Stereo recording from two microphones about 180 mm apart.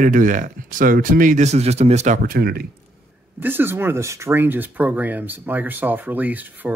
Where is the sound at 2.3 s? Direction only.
55° right (ahead or behind).